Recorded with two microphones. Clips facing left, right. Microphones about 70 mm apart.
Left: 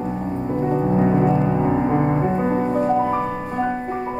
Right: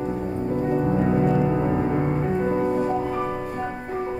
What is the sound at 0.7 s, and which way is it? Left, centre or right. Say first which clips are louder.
Music: left 4 dB; left.